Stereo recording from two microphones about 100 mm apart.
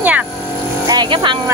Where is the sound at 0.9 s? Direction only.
50° right (ahead or behind).